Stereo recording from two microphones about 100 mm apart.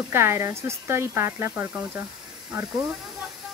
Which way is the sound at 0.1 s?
25° right (ahead or behind).